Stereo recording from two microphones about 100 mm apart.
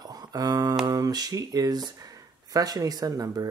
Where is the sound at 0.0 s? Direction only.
40° right (ahead or behind).